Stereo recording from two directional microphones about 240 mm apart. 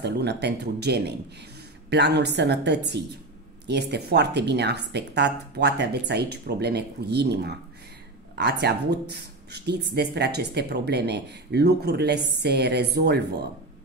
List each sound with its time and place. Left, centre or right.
0.0 s speech: right